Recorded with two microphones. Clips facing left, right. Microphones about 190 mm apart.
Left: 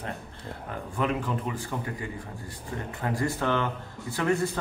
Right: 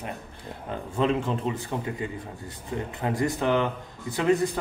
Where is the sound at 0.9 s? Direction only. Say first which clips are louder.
Right 4 dB; 25° right (ahead or behind).